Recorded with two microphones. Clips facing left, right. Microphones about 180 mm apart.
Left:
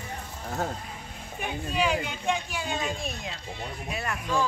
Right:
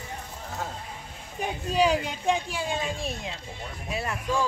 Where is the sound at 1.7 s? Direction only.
35° right (ahead or behind).